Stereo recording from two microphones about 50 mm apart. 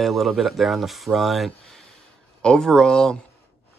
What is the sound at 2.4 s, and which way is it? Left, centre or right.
Speech, centre.